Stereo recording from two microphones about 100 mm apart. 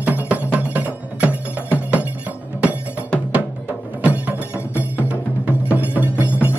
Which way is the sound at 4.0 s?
15° right (ahead or behind).